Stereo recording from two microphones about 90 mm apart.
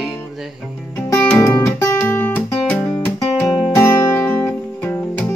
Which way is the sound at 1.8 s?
25° left (ahead or behind).